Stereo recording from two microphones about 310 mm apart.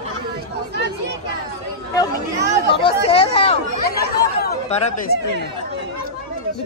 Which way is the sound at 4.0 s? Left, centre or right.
Left.